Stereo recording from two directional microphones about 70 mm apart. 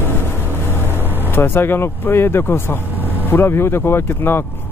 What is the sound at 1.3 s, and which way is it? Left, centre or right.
Speech, left.